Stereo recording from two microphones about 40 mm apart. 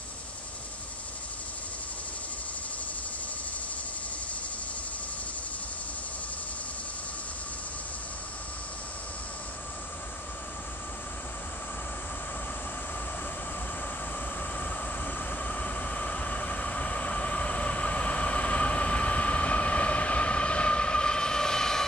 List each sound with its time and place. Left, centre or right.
14.5 s train: left; by 21.8 s centre